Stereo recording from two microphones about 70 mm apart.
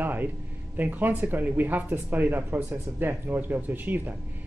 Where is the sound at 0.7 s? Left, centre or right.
Right.